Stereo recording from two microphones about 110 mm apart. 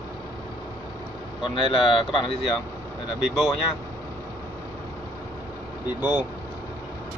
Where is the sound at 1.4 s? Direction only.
50° left (ahead or behind).